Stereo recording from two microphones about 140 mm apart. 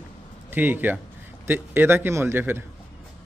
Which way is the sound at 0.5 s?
15° right (ahead or behind).